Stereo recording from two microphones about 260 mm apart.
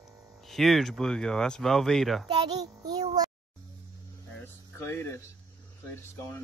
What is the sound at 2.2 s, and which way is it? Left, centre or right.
Child singing, centre.